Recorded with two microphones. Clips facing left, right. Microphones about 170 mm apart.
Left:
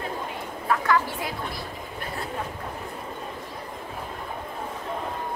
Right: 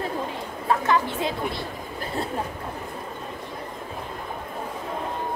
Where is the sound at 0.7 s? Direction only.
25° right (ahead or behind).